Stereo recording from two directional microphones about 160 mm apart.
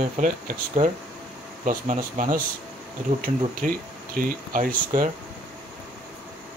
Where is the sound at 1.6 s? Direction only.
55° right (ahead or behind).